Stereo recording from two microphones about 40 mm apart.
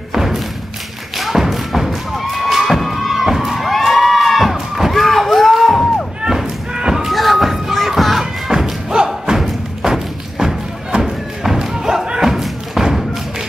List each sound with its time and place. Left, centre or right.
0.1 s thump: centre
6.2 s thump: centre
7.1 s music: centre
8.5 s thump: centre
9.4 s music: centre
11.0 s thump: centre